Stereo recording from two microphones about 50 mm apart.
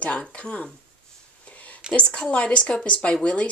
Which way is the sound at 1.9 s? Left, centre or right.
Left.